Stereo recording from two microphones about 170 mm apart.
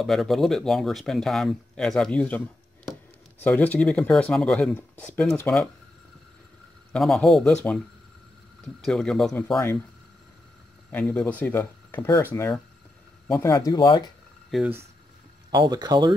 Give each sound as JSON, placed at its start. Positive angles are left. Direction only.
{"t": 0.0, "sound": "speech", "side_deg": 0}
{"t": 6.9, "sound": "speech", "side_deg": 0}
{"t": 8.8, "sound": "speech", "side_deg": 5}
{"t": 10.9, "sound": "speech", "side_deg": 10}
{"t": 14.5, "sound": "speech", "side_deg": 0}
{"t": 15.5, "sound": "speech", "side_deg": -25}